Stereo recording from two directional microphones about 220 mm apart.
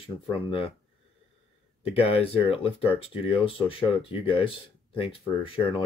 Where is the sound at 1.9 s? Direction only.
25° left (ahead or behind).